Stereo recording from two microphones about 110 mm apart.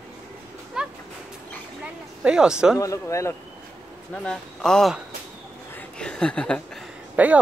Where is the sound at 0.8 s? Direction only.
5° right (ahead or behind).